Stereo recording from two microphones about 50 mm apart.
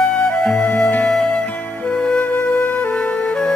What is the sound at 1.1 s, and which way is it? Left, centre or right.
Music, centre.